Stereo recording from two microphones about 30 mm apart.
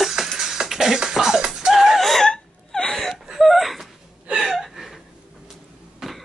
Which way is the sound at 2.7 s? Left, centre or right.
Centre.